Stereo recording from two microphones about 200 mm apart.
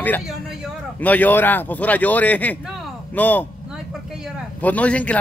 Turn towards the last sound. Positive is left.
turn(degrees=5)  # may be behind; listen again after turning